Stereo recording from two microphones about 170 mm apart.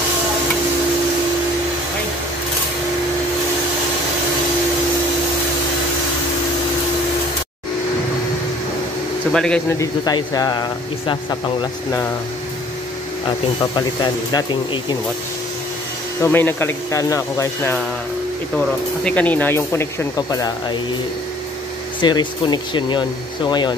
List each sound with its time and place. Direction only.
9.3 s speech: 5° left (ahead or behind)
9.7 s speech: 20° left (ahead or behind)
13.6 s speech: 25° left (ahead or behind)
16.2 s speech: 10° left (ahead or behind)
18.5 s speech: 5° left (ahead or behind); by 20.7 s 20° left (ahead or behind)
22.0 s speech: 25° left (ahead or behind)